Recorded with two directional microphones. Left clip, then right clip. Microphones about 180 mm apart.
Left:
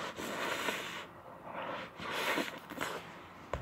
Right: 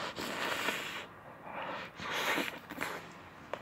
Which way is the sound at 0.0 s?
10° right (ahead or behind).